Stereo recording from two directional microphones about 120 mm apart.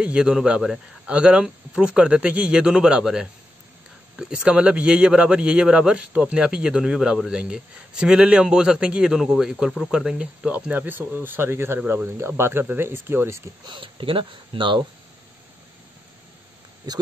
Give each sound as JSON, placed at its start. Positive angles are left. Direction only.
{"t": 0.0, "sound": "speech", "side_deg": -5}
{"t": 13.7, "sound": "speech", "side_deg": -45}